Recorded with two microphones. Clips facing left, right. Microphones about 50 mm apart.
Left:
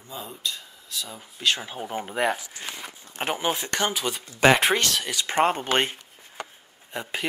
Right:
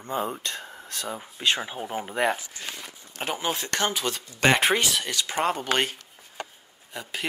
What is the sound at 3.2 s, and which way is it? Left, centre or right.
Speech, centre.